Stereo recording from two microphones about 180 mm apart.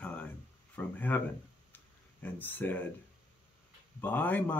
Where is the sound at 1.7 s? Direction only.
10° left (ahead or behind).